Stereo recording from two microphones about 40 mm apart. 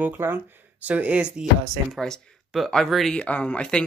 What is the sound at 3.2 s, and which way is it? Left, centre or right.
Speech, left.